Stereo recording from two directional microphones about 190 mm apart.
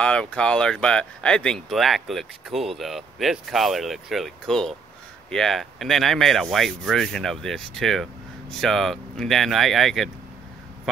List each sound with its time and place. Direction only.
0.0 s speech: 5° left (ahead or behind)